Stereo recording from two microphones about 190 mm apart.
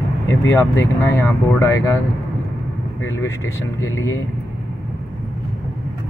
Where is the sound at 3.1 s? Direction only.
15° left (ahead or behind).